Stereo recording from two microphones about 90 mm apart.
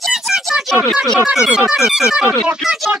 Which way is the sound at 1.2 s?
10° right (ahead or behind).